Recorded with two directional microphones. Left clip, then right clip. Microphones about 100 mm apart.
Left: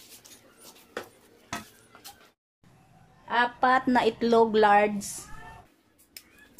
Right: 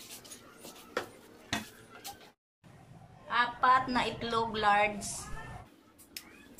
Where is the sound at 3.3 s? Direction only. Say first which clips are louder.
Left 4 dB; 90° left.